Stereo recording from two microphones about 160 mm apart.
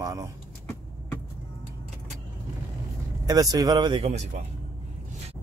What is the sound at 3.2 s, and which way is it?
Speech, 25° right (ahead or behind).